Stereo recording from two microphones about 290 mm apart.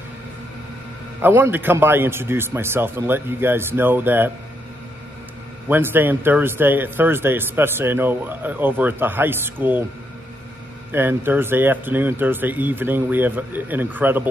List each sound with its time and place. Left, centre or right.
1.2 s speech: centre
5.7 s speech: centre
10.9 s speech: centre